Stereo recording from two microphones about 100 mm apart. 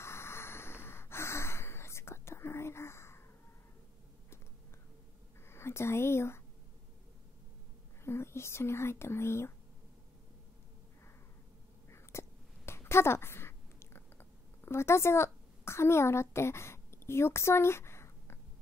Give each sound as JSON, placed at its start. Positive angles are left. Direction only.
{"t": 0.0, "sound": "snort", "side_deg": 25}
{"t": 5.5, "sound": "speech", "side_deg": 25}
{"t": 8.0, "sound": "speech", "side_deg": 25}
{"t": 11.9, "sound": "a sound", "side_deg": 25}